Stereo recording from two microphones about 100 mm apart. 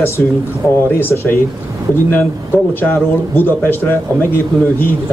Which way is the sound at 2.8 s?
20° left (ahead or behind).